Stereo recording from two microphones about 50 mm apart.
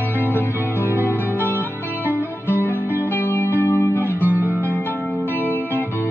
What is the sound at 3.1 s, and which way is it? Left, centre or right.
Music, left.